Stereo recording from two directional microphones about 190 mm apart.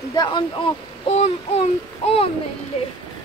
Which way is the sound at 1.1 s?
35° left (ahead or behind).